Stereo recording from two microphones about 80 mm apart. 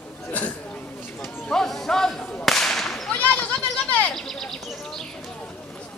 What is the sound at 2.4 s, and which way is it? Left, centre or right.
Whip, centre.